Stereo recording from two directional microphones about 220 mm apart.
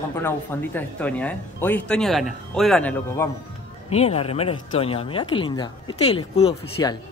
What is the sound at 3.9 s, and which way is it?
Speech, 30° left (ahead or behind).